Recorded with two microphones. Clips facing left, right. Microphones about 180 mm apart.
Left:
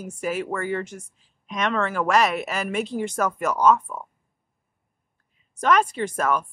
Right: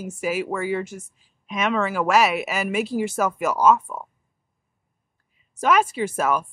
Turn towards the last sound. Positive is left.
turn(degrees=-5)  # may be behind; listen again after turning